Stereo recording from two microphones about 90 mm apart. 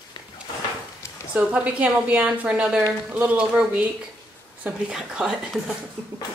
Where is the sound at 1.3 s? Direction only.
15° right (ahead or behind).